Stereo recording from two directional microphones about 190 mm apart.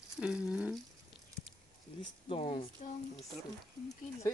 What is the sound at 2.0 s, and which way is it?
Speech, 30° left (ahead or behind).